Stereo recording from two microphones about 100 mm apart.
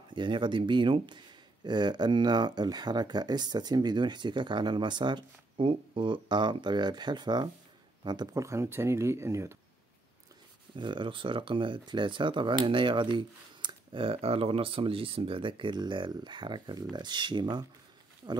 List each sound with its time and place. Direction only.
0.1 s speech: 55° right (ahead or behind)
8.3 s speech: 30° right (ahead or behind)
10.8 s speech: 55° right (ahead or behind)